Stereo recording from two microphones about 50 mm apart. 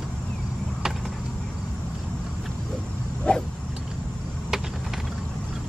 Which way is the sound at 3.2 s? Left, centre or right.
Centre.